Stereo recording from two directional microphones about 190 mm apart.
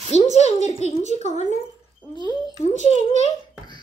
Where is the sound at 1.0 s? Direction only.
40° right (ahead or behind).